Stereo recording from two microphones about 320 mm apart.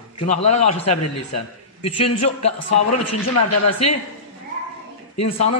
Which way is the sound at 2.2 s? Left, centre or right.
Centre.